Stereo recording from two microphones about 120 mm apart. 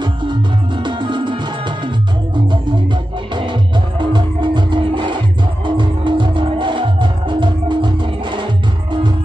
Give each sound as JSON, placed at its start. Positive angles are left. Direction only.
{"t": 0.8, "sound": "music", "side_deg": -40}
{"t": 4.0, "sound": "music", "side_deg": -40}